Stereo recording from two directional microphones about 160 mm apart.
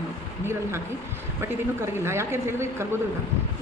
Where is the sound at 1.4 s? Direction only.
15° right (ahead or behind).